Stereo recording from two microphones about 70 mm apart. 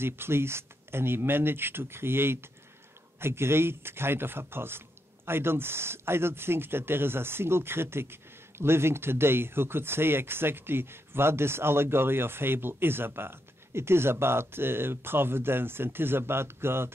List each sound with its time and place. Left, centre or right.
0.0 s speech: right